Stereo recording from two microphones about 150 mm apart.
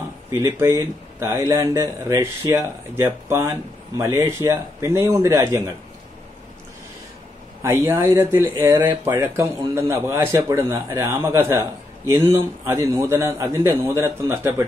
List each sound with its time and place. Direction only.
0.3 s speech: 20° right (ahead or behind)
7.6 s speech: 20° right (ahead or behind)